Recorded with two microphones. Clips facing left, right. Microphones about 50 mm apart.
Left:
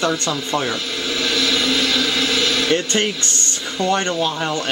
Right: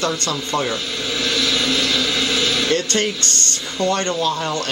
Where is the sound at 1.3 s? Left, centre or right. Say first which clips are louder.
Left 1 dB; centre.